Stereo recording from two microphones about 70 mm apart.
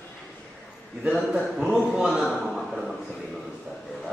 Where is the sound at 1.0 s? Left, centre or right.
Centre.